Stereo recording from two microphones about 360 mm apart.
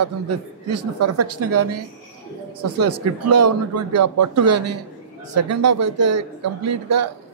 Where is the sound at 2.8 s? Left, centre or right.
Right.